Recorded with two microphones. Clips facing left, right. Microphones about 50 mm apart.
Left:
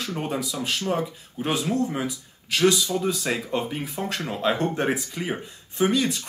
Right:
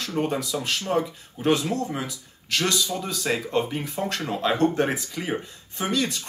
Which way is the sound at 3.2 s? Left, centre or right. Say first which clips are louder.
Right 2 dB; centre.